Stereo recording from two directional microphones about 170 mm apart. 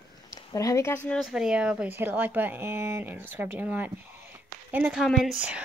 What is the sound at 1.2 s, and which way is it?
A woman's voice, 5° right (ahead or behind).